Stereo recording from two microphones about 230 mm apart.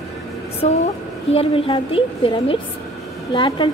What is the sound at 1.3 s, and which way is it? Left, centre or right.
A woman's voice, left.